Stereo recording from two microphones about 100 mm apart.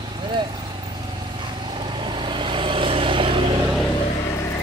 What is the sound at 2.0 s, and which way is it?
Vehicle, 55° right (ahead or behind).